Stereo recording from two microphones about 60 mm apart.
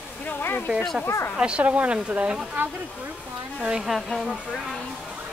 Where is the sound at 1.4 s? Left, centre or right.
Centre.